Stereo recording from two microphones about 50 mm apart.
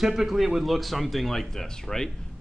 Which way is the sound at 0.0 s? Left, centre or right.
Centre.